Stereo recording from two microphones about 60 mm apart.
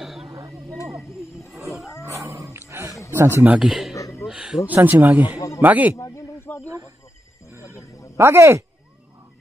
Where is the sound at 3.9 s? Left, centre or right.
Left.